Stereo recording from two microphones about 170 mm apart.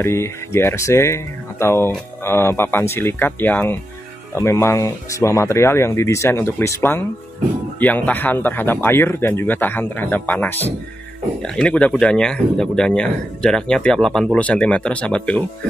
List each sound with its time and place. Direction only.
0.0 s speech: 15° left (ahead or behind)